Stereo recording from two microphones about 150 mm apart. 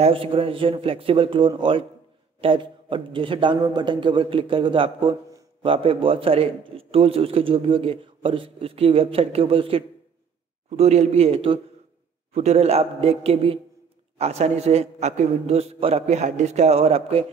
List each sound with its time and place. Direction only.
0.0 s a man's voice: 35° right (ahead or behind)